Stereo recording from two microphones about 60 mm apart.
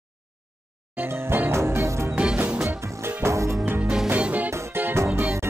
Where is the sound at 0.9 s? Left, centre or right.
Right.